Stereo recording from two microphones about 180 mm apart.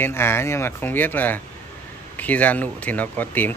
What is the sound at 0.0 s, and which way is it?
Speech, 15° left (ahead or behind).